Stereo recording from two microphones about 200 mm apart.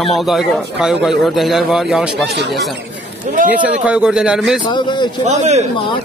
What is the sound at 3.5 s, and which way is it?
Speech, 5° right (ahead or behind).